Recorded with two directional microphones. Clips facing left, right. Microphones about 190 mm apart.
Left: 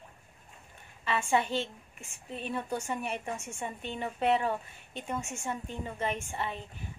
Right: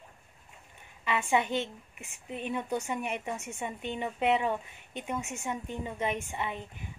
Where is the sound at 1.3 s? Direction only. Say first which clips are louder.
Even; 15° right (ahead or behind).